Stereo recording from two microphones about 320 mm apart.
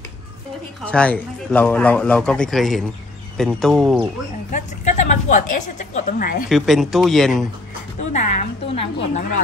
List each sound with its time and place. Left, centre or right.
0.8 s a man's voice: centre
4.5 s a woman's voice: left
6.5 s a man's voice: centre
8.0 s a woman's voice: left